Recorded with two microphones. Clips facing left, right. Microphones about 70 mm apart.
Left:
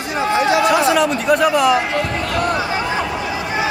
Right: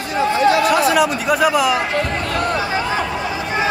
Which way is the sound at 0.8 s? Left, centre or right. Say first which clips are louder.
Left 1 dB; centre.